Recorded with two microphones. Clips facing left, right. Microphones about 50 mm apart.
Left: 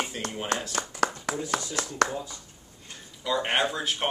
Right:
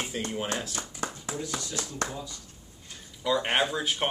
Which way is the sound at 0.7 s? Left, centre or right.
Left.